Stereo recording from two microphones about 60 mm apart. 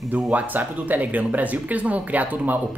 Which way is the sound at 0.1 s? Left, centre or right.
Right.